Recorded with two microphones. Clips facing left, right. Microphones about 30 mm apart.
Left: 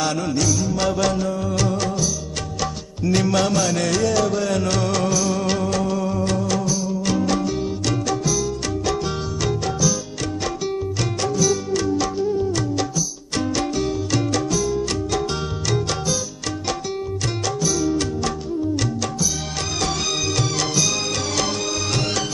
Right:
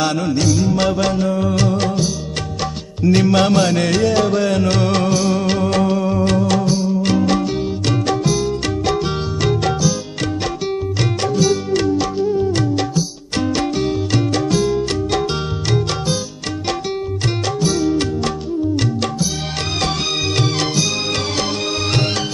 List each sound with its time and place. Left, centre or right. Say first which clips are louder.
0.0 s music: right 4 dB; right
0.9 s music: right 4 dB; right
5.4 s music: right 4 dB; right
5.7 s music: right 5 dB; right
11.3 s music: right 4 dB; right
13.4 s music: right 4 dB; right
14.5 s music: right 5 dB; right
17.6 s music: right 4 dB; right